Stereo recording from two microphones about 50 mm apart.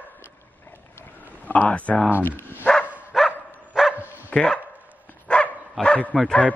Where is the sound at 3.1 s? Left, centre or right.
Centre.